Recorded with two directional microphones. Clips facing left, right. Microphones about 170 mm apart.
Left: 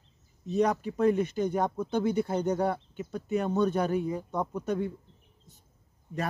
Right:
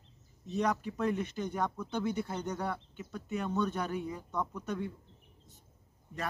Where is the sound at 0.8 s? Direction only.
45° left (ahead or behind).